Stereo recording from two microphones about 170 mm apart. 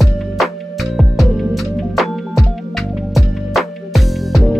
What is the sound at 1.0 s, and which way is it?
Music, centre (ahead or behind).